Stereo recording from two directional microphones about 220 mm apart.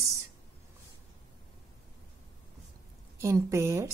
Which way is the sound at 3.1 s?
15° right (ahead or behind).